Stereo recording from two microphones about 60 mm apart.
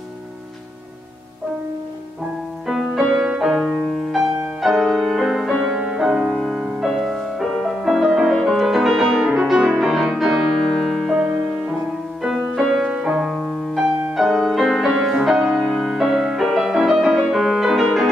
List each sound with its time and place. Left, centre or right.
2.7 s music: centre
9.3 s music: centre
12.4 s music: centre
12.9 s music: centre
13.3 s music: centre